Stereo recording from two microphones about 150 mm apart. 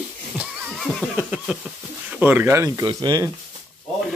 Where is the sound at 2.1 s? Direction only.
15° right (ahead or behind).